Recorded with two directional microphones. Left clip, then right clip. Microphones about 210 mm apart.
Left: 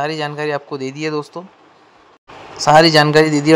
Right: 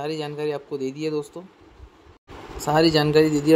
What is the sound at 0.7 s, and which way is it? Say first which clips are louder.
Speech: left 4 dB; 35° left (ahead or behind).